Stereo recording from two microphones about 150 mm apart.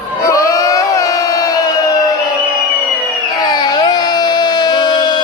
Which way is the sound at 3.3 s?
25° left (ahead or behind).